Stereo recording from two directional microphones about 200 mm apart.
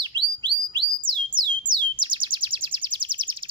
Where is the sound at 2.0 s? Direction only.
25° right (ahead or behind).